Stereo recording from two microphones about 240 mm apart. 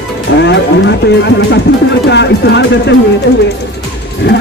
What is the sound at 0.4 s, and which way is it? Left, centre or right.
Speech, left.